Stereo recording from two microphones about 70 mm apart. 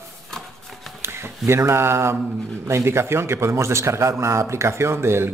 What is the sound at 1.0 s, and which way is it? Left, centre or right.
Speech, right.